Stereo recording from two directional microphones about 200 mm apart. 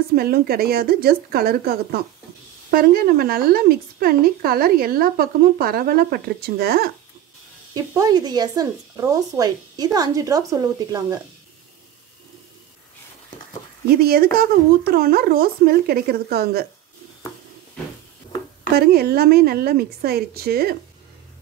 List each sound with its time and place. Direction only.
0.1 s speech: 50° right (ahead or behind)
7.7 s speech: 20° right (ahead or behind)
13.8 s speech: 50° right (ahead or behind)
18.8 s speech: 50° right (ahead or behind)